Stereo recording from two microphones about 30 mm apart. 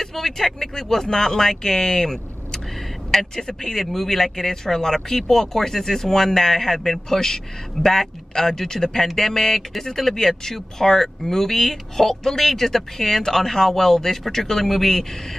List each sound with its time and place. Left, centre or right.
0.0 s speech: centre